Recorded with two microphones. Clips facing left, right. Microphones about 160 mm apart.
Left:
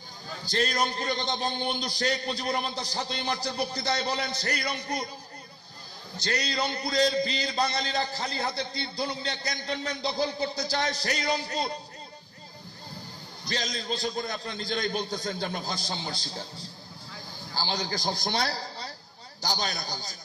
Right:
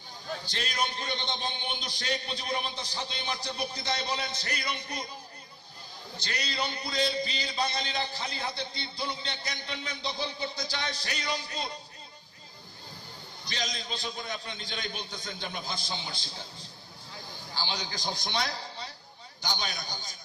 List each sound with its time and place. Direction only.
0.5 s a man's voice: 40° left (ahead or behind)
6.1 s a man's voice: 35° left (ahead or behind)
13.5 s a man's voice: 40° left (ahead or behind)
17.6 s a man's voice: 40° left (ahead or behind)